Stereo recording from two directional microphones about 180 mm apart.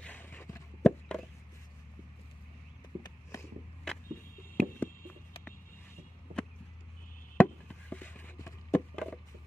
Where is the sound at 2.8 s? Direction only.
25° left (ahead or behind).